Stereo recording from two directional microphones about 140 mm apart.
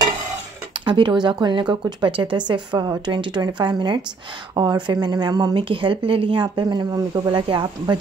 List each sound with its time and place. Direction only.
0.8 s speech: 35° right (ahead or behind)